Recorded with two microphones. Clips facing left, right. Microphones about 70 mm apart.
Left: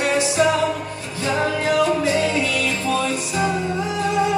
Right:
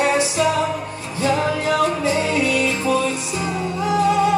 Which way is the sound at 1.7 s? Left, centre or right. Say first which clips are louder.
Left 2 dB; right.